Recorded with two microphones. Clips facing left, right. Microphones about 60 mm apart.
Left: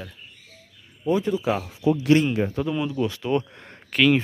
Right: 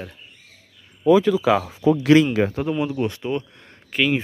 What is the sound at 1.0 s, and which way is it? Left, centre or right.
Speech, right.